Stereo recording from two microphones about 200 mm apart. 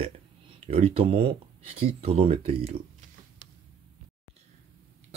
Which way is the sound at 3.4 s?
35° right (ahead or behind).